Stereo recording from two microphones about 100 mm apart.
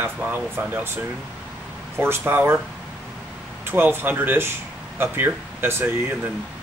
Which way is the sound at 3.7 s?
20° right (ahead or behind).